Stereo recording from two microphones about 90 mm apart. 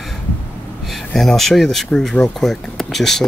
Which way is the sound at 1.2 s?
5° left (ahead or behind).